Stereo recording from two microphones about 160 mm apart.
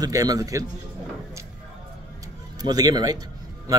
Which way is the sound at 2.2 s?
25° right (ahead or behind).